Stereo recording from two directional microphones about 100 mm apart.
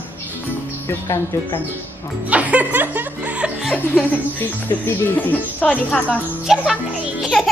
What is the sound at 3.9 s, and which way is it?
Speech, 20° left (ahead or behind).